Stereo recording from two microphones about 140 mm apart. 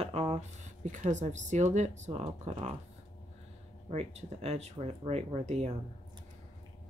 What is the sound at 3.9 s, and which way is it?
Speech, 50° right (ahead or behind).